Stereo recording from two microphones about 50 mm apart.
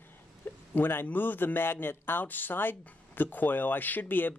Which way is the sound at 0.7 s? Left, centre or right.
Left.